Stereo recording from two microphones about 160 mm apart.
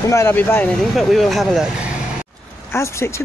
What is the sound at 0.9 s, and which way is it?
Speech, centre (ahead or behind).